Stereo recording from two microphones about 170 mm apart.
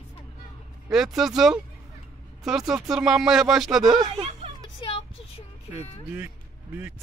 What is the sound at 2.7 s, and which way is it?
Speech, 5° right (ahead or behind).